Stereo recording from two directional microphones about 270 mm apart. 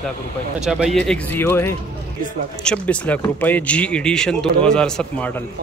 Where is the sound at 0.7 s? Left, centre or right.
Centre.